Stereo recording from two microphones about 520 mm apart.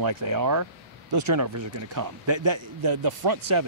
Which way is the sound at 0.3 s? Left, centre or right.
Right.